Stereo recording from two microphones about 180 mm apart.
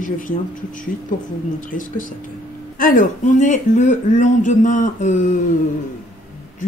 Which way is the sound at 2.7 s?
45° left (ahead or behind).